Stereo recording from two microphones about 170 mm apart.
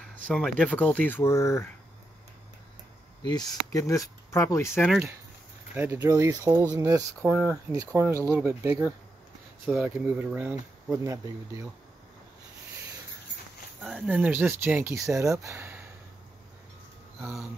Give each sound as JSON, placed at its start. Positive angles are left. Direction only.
{"t": 0.3, "sound": "speech", "side_deg": 5}
{"t": 3.2, "sound": "speech", "side_deg": 25}
{"t": 5.8, "sound": "speech", "side_deg": -15}
{"t": 7.2, "sound": "speech", "side_deg": 10}
{"t": 7.7, "sound": "speech", "side_deg": -20}
{"t": 13.8, "sound": "speech", "side_deg": -5}
{"t": 17.2, "sound": "speech", "side_deg": 0}